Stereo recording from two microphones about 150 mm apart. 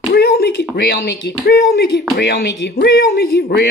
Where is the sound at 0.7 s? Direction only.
90° left.